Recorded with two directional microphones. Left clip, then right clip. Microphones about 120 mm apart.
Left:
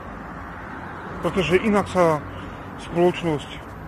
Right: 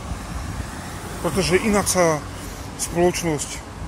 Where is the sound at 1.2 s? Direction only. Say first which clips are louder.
Even; 10° right (ahead or behind).